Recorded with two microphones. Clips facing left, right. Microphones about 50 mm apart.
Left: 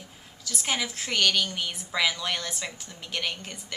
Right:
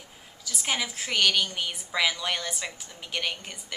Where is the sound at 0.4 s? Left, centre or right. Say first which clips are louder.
Even; centre.